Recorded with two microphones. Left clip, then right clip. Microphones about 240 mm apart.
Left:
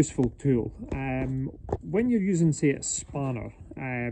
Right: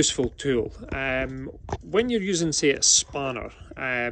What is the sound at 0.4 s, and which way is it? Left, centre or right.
Speech, left.